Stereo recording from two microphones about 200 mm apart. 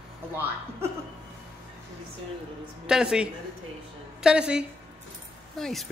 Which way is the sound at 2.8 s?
5° right (ahead or behind).